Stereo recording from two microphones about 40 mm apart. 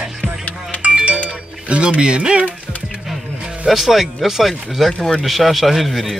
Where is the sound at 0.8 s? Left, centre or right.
Right.